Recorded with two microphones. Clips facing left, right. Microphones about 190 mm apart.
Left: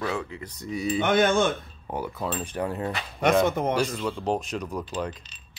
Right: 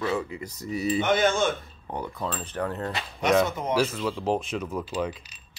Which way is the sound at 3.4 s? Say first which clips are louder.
Left 6 dB; 55° left (ahead or behind).